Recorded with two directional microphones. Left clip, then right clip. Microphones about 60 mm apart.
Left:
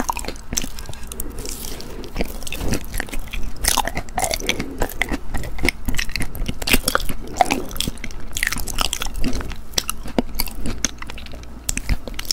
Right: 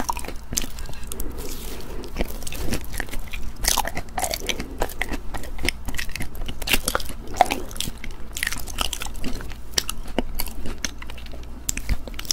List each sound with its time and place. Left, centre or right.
0.0 s a sound: centre
1.8 s biting: centre
4.2 s chewing: centre
5.7 s crunch: centre
11.6 s biting: centre